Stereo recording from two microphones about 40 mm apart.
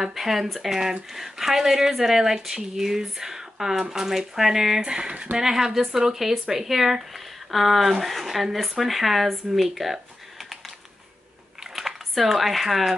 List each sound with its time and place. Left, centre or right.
0.0 s speech: centre
4.8 s speech: right
5.4 s speech: centre
11.7 s speech: centre